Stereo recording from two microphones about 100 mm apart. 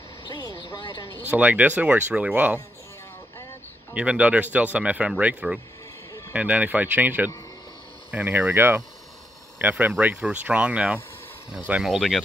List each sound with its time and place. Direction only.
0.3 s vehicle: 45° left (ahead or behind)
1.3 s speech: 15° right (ahead or behind)
3.9 s speech: 10° right (ahead or behind)